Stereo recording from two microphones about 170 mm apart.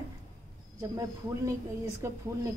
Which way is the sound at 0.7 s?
20° right (ahead or behind).